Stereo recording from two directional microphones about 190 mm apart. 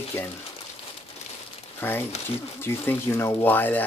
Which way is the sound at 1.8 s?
10° left (ahead or behind).